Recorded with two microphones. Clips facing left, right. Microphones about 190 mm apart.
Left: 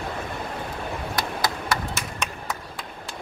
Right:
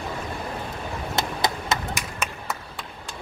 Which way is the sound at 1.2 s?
20° right (ahead or behind).